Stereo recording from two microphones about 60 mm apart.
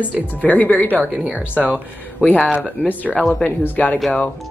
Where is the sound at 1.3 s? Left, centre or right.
Right.